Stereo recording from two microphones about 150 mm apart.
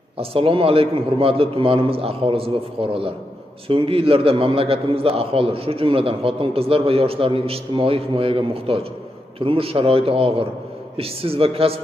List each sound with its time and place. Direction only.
0.2 s a man's voice: 40° right (ahead or behind)